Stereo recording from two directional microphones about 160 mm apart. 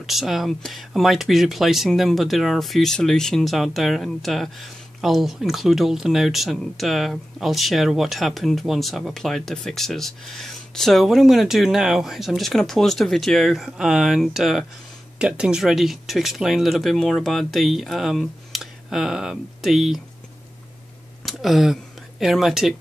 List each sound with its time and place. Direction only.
0.0 s speech: centre (ahead or behind)
21.3 s speech: centre (ahead or behind)